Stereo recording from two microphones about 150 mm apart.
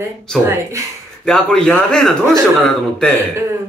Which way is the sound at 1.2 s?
5° left (ahead or behind).